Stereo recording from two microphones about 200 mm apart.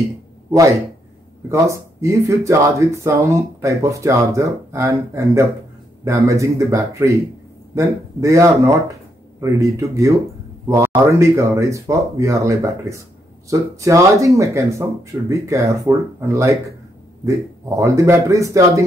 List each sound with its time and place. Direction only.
1.5 s speech: 15° right (ahead or behind)